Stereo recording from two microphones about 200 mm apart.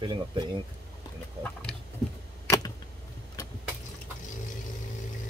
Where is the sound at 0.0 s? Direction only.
25° right (ahead or behind).